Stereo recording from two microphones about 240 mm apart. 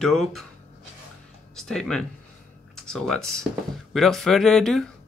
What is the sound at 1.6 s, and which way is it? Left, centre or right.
Speech, centre.